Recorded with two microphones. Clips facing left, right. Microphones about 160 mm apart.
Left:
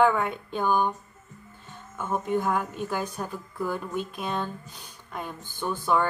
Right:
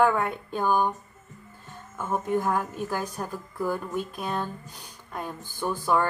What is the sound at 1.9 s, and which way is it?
Speech, 5° right (ahead or behind).